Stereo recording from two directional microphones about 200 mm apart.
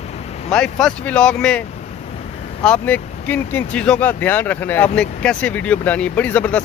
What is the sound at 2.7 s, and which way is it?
Speech, 10° left (ahead or behind).